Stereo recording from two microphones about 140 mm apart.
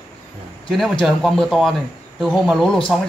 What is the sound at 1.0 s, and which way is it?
Speech, centre (ahead or behind).